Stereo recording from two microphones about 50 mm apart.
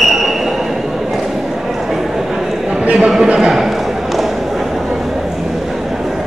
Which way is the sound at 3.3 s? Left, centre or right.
Centre.